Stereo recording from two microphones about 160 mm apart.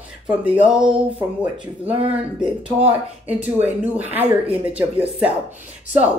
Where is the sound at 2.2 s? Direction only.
5° right (ahead or behind).